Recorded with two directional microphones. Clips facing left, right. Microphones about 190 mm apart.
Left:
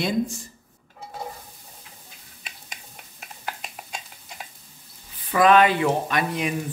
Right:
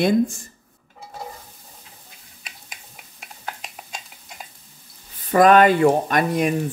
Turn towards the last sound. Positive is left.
turn(degrees=-45)  # may be behind; listen again after turning